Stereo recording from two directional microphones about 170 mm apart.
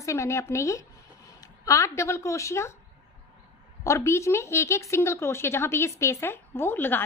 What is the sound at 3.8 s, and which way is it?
A woman's voice, 15° left (ahead or behind).